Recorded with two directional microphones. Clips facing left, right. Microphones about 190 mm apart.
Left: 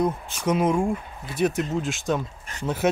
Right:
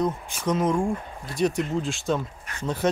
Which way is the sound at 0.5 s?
10° left (ahead or behind).